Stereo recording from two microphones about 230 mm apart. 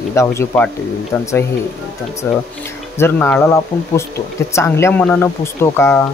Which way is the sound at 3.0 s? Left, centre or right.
Centre.